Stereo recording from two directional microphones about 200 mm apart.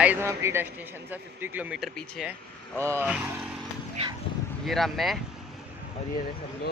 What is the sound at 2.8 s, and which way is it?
Speech, 10° right (ahead or behind).